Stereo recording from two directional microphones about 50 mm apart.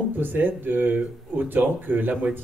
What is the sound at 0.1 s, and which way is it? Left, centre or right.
Speech, right.